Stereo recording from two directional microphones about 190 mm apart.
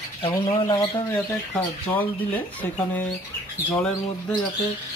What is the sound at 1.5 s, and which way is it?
Speech, 10° left (ahead or behind).